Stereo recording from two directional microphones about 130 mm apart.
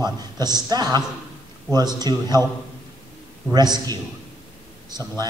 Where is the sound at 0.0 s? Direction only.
30° right (ahead or behind).